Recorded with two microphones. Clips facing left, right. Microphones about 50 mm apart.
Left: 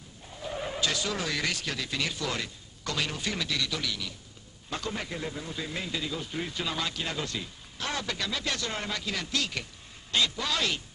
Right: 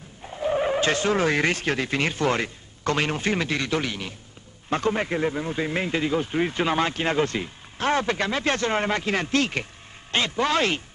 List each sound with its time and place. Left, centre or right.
0.4 s speech: right